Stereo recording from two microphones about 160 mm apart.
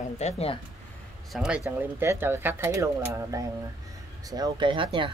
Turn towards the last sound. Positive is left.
turn(degrees=-30)  # may be behind; listen again after turning